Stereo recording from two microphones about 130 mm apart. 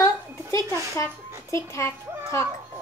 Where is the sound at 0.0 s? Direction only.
25° left (ahead or behind).